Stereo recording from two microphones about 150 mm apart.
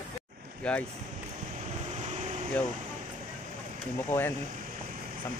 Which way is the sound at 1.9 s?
55° right (ahead or behind).